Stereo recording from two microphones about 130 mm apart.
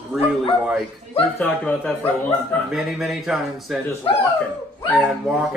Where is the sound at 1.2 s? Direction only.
10° left (ahead or behind).